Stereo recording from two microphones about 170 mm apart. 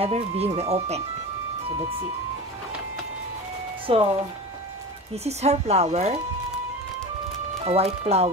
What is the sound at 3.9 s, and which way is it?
Speech, 35° right (ahead or behind).